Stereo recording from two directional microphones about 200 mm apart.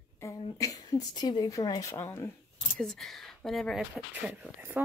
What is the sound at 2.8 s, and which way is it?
A woman's voice, centre (ahead or behind).